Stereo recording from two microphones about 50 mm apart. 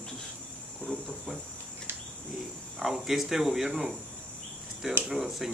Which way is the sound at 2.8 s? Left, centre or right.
Centre.